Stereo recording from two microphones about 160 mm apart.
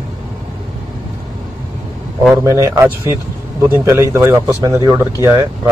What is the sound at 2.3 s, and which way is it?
Speech, 20° right (ahead or behind).